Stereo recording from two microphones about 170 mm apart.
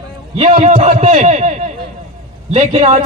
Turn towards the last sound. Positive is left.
turn(degrees=-35)  # may be behind; listen again after turning